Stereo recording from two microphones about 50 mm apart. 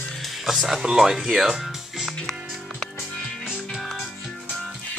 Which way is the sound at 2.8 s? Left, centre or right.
Centre.